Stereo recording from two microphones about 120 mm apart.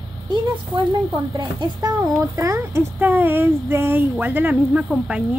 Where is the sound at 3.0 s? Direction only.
15° right (ahead or behind).